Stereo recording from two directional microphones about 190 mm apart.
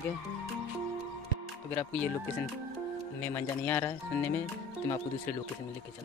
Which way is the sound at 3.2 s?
10° left (ahead or behind).